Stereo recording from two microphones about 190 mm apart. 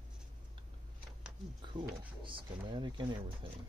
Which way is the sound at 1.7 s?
25° right (ahead or behind).